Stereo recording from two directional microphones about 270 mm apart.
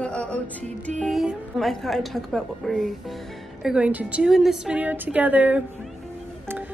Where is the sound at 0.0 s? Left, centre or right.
Centre.